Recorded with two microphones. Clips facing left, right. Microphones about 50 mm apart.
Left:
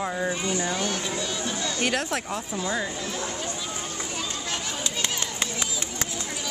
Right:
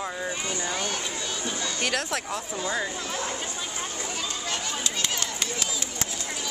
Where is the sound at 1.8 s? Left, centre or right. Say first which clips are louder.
Left 2 dB; centre.